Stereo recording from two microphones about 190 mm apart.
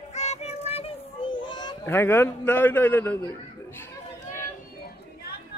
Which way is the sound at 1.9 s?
10° left (ahead or behind).